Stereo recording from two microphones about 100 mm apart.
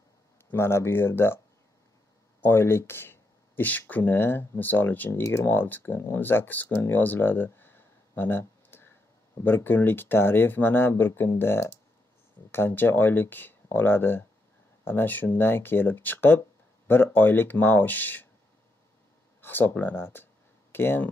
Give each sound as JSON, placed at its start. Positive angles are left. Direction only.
{"t": 0.5, "sound": "speech", "side_deg": 25}
{"t": 2.4, "sound": "speech", "side_deg": 25}
{"t": 19.4, "sound": "speech", "side_deg": 20}